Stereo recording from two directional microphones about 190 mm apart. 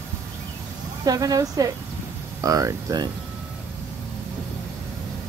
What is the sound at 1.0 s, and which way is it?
Speech, 20° right (ahead or behind).